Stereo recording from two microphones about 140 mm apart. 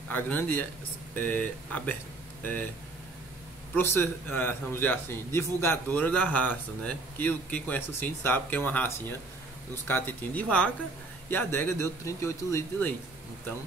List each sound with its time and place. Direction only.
0.1 s a man's voice: 15° left (ahead or behind)
3.7 s a man's voice: 15° left (ahead or behind)